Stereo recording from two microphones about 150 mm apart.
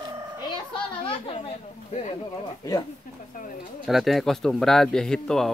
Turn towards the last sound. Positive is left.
turn(degrees=5)  # may be behind; listen again after turning